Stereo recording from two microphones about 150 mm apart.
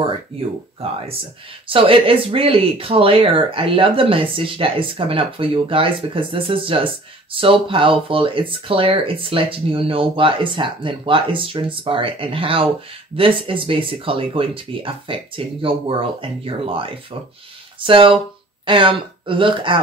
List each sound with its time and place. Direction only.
1.7 s speech: 35° right (ahead or behind)